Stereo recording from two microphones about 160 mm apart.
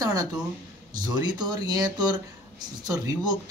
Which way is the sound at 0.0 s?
25° right (ahead or behind).